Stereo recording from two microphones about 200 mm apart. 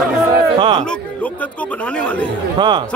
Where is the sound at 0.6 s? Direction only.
25° right (ahead or behind).